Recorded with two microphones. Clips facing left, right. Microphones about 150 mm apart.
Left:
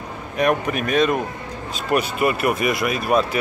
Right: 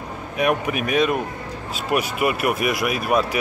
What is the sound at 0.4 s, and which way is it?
Speech, 10° right (ahead or behind).